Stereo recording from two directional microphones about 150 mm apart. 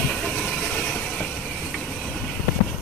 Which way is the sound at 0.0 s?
10° left (ahead or behind).